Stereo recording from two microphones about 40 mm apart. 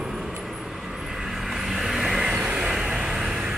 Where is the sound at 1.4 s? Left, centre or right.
Centre.